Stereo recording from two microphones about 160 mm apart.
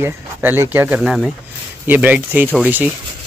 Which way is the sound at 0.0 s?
15° right (ahead or behind).